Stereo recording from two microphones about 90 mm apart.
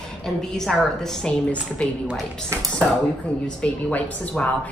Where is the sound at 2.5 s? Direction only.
30° right (ahead or behind).